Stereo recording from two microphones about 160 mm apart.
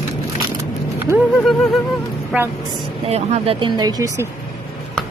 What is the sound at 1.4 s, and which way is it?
A woman's voice, centre (ahead or behind).